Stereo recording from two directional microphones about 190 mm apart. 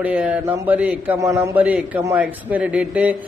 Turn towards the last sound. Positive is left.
turn(degrees=-5)  # may be behind; listen again after turning